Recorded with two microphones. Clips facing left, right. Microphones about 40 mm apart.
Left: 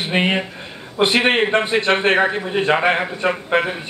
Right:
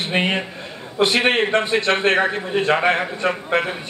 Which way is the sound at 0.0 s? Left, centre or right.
Centre.